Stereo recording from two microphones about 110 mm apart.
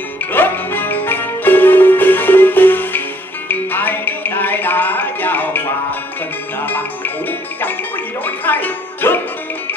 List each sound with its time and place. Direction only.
0.3 s music: 20° left (ahead or behind)
8.5 s music: 15° left (ahead or behind)